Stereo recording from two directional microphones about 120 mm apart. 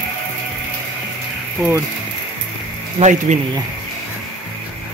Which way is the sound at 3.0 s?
80° right.